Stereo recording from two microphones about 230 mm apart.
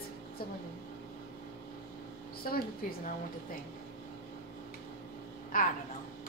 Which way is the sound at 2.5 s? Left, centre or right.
Left.